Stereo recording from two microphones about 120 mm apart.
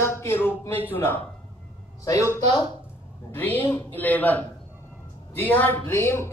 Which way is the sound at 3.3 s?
15° left (ahead or behind).